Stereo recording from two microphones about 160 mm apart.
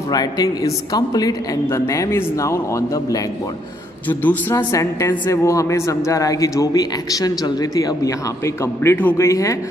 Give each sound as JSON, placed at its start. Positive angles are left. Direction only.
{"t": 0.1, "sound": "a woman's voice", "side_deg": 25}
{"t": 4.1, "sound": "a woman's voice", "side_deg": 10}